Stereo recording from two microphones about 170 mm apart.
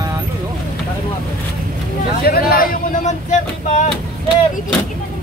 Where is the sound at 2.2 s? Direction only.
60° left (ahead or behind); by 3.9 s 45° left (ahead or behind).